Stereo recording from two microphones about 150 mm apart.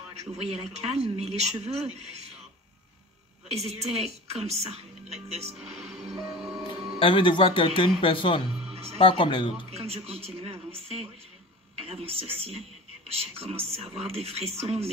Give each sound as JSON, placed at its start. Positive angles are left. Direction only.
{"t": 0.1, "sound": "a woman's voice", "side_deg": -45}
{"t": 3.5, "sound": "a woman's voice", "side_deg": -45}
{"t": 6.1, "sound": "music", "side_deg": -20}
{"t": 7.0, "sound": "speech", "side_deg": 35}
{"t": 9.7, "sound": "a woman's voice", "side_deg": -45}